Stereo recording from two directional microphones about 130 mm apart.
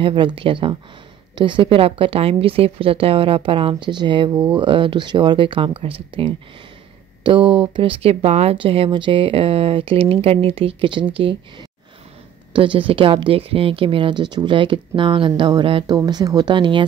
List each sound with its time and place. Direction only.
0.0 s speech: 40° right (ahead or behind)